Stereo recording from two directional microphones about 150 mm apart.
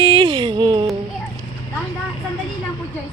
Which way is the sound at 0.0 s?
30° right (ahead or behind).